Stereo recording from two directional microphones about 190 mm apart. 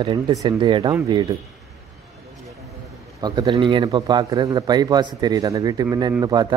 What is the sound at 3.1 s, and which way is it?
Speech, 20° right (ahead or behind).